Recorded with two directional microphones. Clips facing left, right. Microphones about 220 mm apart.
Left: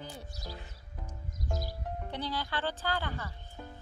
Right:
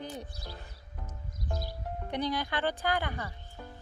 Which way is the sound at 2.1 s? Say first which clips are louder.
Right 5 dB; 15° right (ahead or behind).